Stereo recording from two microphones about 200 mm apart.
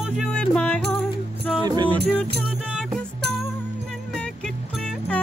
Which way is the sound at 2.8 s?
Centre (ahead or behind).